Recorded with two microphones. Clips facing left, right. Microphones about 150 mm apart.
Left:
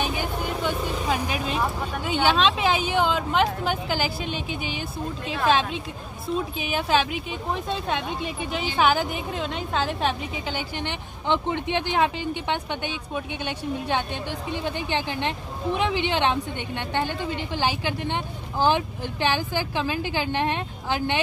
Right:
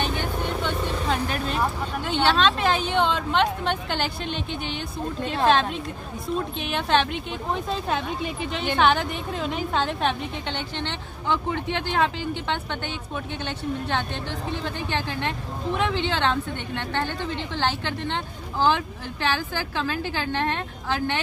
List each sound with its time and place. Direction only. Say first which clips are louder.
0.0 s a woman's voice: even; 5° left (ahead or behind)
10.8 s speech: even; 15° left (ahead or behind)
14.5 s speech: left 2 dB; 15° left (ahead or behind)